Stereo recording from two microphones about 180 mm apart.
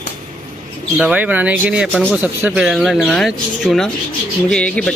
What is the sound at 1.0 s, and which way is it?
Speech, 10° right (ahead or behind).